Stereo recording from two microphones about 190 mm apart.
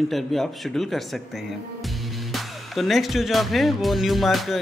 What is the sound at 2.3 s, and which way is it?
Music, centre (ahead or behind).